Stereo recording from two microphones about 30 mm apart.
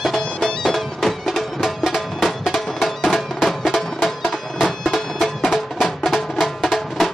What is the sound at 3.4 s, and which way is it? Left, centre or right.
Music, centre.